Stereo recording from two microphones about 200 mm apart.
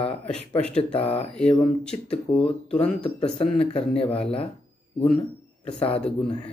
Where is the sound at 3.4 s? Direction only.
30° left (ahead or behind).